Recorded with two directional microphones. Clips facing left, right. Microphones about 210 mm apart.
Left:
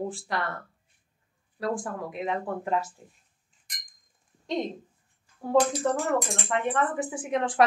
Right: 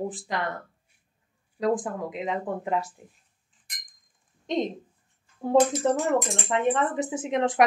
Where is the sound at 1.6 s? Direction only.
20° right (ahead or behind).